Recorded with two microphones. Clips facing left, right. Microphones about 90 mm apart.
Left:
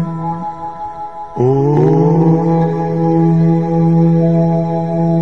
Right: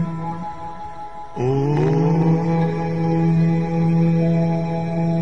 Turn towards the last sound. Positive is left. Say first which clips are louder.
# left 7 dB
turn(degrees=30)  # may be behind; listen again after turning